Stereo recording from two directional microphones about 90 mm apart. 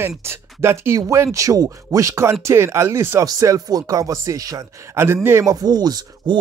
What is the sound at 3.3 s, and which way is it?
Speech, 45° right (ahead or behind).